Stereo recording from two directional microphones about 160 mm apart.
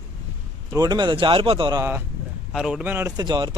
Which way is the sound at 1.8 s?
15° right (ahead or behind).